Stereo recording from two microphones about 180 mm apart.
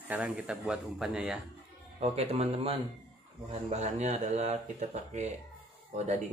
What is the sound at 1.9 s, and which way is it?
Speech, 35° right (ahead or behind).